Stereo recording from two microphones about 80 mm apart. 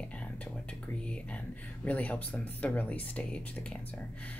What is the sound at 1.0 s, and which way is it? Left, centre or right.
Speech, centre.